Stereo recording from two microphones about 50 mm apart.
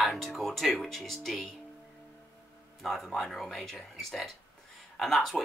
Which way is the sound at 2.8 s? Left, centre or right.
Centre.